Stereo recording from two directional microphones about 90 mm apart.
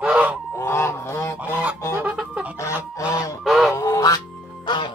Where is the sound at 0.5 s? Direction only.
30° left (ahead or behind).